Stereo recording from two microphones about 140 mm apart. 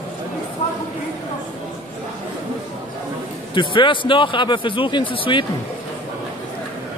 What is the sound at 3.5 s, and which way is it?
Speech, 35° left (ahead or behind).